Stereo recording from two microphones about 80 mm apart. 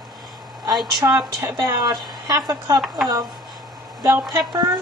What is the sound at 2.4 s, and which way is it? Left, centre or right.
Speech, right.